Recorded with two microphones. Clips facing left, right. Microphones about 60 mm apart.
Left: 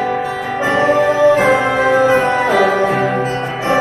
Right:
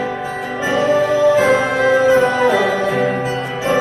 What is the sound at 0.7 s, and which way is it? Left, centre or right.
Music, left.